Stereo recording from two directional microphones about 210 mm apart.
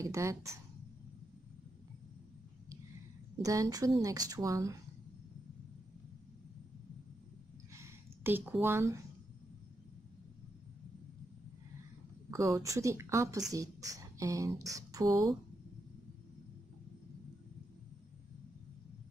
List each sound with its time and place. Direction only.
0.0 s speech: 15° right (ahead or behind)
3.4 s a woman's voice: 15° right (ahead or behind)
7.7 s a sound: 10° right (ahead or behind)
12.3 s a woman's voice: 15° right (ahead or behind)